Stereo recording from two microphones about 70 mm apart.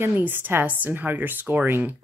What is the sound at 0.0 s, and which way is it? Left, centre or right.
Speech, right.